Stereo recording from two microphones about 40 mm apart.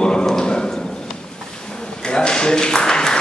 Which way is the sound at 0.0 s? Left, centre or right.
Left.